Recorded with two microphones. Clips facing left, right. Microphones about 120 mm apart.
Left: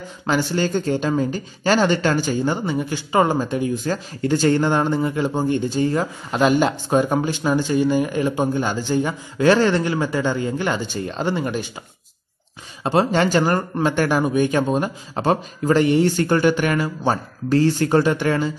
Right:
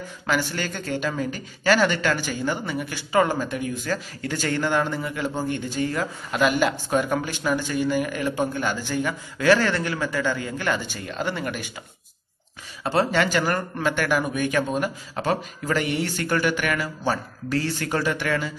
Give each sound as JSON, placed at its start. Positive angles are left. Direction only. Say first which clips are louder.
{"t": 0.3, "sound": "speech", "louder": "left 6 dB", "side_deg": 30}
{"t": 12.8, "sound": "speech", "louder": "left 4 dB", "side_deg": 20}
{"t": 13.1, "sound": "speech", "louder": "left 4 dB", "side_deg": 30}